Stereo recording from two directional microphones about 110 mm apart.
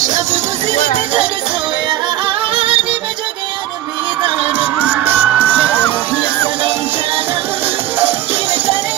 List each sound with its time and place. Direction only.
1.9 s music: 55° right (ahead or behind)
4.2 s music: 55° right (ahead or behind)
4.8 s music: 15° right (ahead or behind)